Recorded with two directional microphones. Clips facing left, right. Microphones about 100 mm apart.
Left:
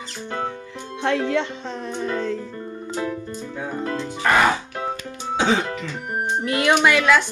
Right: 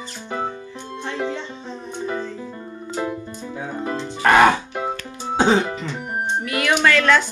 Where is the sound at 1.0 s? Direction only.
70° left (ahead or behind); by 2.4 s 85° left.